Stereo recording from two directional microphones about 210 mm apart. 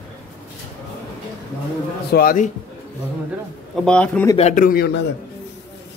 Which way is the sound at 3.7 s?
5° left (ahead or behind).